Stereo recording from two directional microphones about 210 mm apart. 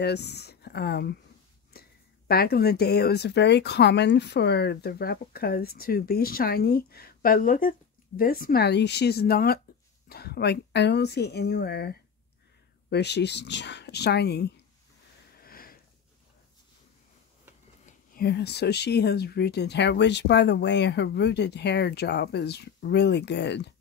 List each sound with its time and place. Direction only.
0.0 s speech: 50° left (ahead or behind)
15.3 s sniff: 45° left (ahead or behind)
17.8 s speech: 45° left (ahead or behind)